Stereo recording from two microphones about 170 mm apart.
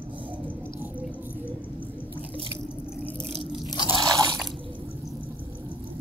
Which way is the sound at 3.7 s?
20° left (ahead or behind).